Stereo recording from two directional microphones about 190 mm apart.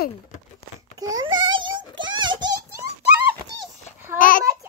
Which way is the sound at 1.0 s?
20° right (ahead or behind).